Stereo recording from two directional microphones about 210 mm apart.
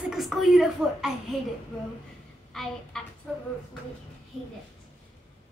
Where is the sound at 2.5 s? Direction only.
Centre (ahead or behind).